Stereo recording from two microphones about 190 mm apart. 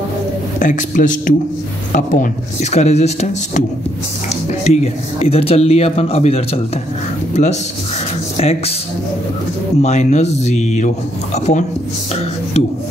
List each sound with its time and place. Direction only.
0.6 s speech: 40° left (ahead or behind)
8.4 s speech: 35° left (ahead or behind)
9.8 s speech: 35° left (ahead or behind)